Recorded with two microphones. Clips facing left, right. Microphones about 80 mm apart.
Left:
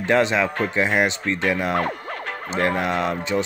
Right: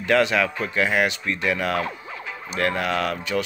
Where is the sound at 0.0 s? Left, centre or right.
Left.